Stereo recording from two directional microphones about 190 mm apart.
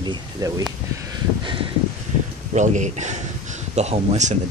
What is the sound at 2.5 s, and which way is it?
Speech, 40° right (ahead or behind).